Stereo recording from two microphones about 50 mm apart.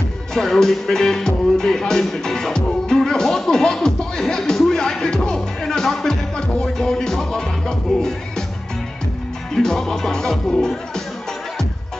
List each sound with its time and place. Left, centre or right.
0.3 s music: centre
9.5 s music: centre